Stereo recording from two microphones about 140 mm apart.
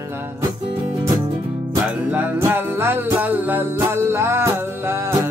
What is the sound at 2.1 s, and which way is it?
Music, 15° right (ahead or behind).